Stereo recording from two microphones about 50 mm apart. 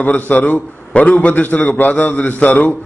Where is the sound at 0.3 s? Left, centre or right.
Left.